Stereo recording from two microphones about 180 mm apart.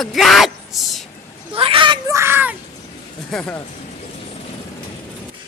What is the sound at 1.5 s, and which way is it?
Children playing, 30° right (ahead or behind).